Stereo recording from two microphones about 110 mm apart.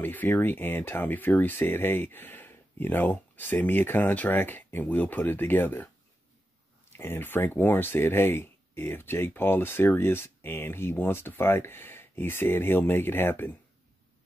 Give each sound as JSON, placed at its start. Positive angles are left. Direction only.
{"t": 0.0, "sound": "speech", "side_deg": 15}
{"t": 6.9, "sound": "speech", "side_deg": 20}